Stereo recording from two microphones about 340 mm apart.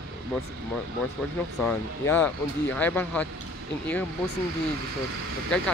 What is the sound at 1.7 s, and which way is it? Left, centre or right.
Speech, centre.